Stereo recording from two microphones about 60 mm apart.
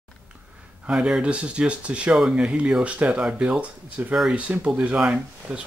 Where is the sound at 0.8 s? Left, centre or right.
Centre.